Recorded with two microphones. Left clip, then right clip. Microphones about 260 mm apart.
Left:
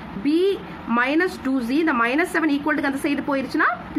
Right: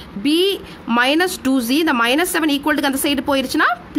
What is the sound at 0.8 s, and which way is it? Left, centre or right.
A woman's voice, right.